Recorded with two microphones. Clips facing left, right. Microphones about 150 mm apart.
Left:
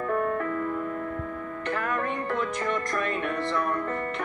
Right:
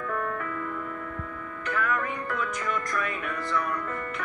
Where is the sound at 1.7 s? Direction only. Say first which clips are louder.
Right 1 dB; 45° left (ahead or behind).